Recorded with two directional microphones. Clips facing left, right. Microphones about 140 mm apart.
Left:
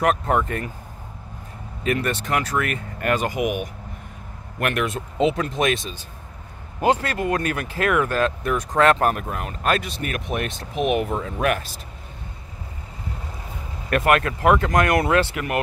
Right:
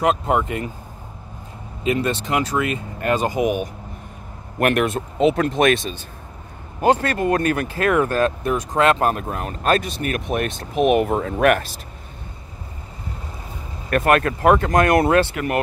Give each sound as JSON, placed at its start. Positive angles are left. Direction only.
{"t": 0.0, "sound": "speech", "side_deg": -20}
{"t": 1.9, "sound": "speech", "side_deg": -25}
{"t": 4.6, "sound": "speech", "side_deg": -50}
{"t": 13.9, "sound": "speech", "side_deg": -35}